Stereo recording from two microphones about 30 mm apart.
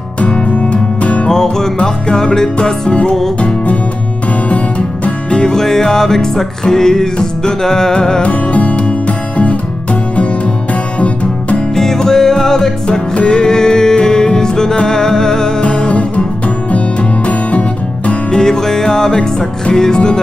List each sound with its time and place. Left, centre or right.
0.3 s music: left
1.3 s music: centre
2.9 s music: left
5.3 s music: left
8.2 s music: left
10.1 s music: left
11.7 s music: centre
15.9 s music: left
18.3 s music: centre